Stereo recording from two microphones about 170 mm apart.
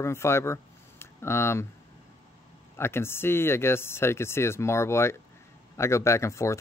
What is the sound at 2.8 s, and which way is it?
Speech, 15° left (ahead or behind).